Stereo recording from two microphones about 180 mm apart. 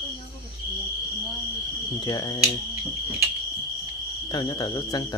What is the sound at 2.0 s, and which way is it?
Speech, 20° left (ahead or behind).